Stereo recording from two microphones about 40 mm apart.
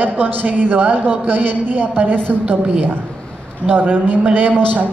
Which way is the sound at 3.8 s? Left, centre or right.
Right.